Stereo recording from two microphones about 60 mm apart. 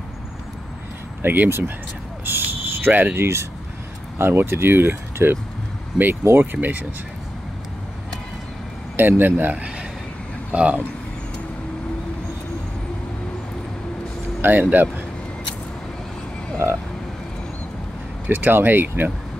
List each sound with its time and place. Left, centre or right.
1.2 s speech: right
2.2 s cricket: right
4.2 s speech: right
8.9 s speech: right; by 10.8 s centre
14.4 s speech: right
16.6 s vehicle: right
18.3 s speech: right